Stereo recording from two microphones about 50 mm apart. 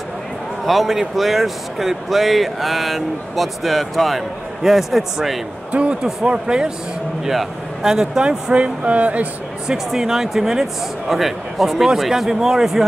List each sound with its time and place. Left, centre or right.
0.7 s speech: centre
5.7 s speech: right
9.7 s speech: centre